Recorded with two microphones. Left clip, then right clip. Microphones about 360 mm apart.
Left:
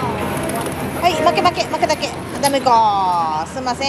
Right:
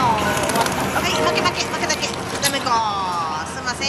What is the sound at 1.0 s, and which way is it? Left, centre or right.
Speech, centre.